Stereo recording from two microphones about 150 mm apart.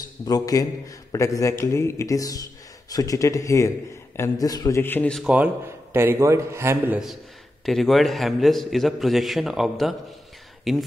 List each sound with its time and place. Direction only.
0.2 s a man's voice: 25° left (ahead or behind)
5.2 s a man's voice: 5° right (ahead or behind)
7.6 s a man's voice: centre (ahead or behind)